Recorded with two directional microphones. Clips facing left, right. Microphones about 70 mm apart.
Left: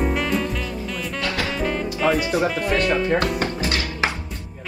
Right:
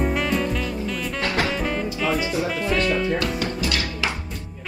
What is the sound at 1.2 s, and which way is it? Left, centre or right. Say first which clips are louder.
Music: right 2 dB; right.